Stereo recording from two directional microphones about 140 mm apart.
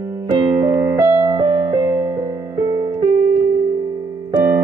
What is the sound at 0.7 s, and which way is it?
Music, 20° right (ahead or behind).